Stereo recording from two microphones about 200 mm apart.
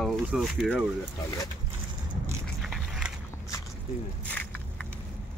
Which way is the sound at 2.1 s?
Centre (ahead or behind).